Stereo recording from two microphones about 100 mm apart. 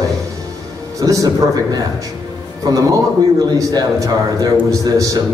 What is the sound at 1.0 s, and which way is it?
Speech, 35° right (ahead or behind).